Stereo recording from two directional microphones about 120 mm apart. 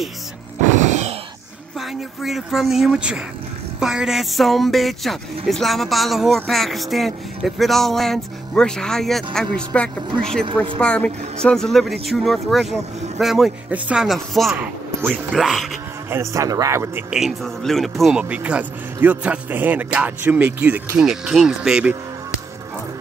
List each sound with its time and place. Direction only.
0.7 s a sound: 85° right
1.8 s speech: centre (ahead or behind)
14.6 s speech: 15° right (ahead or behind)
15.3 s speech: centre (ahead or behind)
16.1 s speech: 25° right (ahead or behind)
17.1 s speech: centre (ahead or behind)